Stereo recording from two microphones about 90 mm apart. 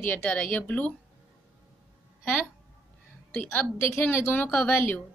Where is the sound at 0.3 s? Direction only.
25° left (ahead or behind).